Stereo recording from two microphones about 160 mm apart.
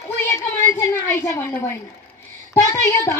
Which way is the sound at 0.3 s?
15° left (ahead or behind).